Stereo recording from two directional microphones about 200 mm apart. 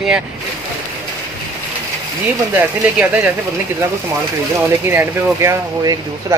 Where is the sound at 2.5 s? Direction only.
10° right (ahead or behind).